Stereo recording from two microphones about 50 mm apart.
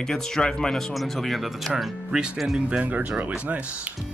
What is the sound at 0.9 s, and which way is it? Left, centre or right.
Speech, centre.